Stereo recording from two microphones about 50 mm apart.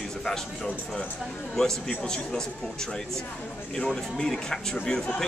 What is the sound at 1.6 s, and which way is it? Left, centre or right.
Speech, centre.